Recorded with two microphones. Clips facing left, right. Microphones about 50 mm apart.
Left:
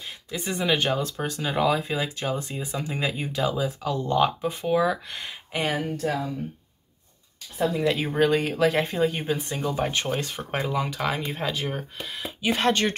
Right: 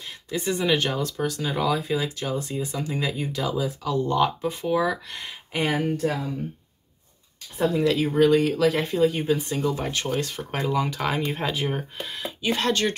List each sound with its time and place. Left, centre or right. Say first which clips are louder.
0.3 s speech: right 2 dB; centre
5.6 s speech: right 3 dB; centre
7.8 s speech: right 4 dB; left
10.8 s speech: right 2 dB; centre
12.0 s speech: right 2 dB; centre
12.4 s speech: left 1 dB; centre